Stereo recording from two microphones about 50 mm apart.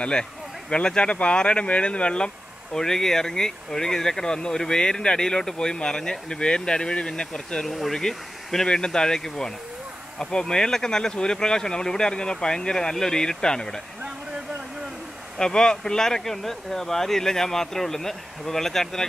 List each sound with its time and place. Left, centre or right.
0.0 s speech: centre
7.6 s speech: centre
15.3 s speech: centre